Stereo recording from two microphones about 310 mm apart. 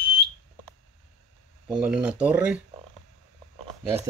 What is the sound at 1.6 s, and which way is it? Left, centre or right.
Speech, centre.